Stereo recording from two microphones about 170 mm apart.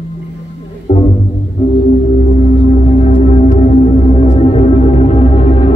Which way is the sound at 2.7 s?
35° left (ahead or behind).